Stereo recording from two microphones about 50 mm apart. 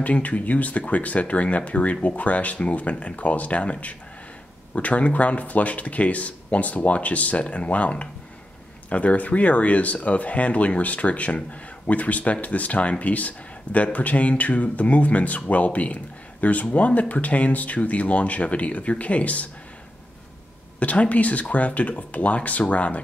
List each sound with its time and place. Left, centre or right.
0.0 s speech: left
20.8 s speech: left